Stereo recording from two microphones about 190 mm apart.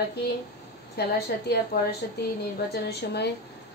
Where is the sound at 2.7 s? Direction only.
60° left (ahead or behind).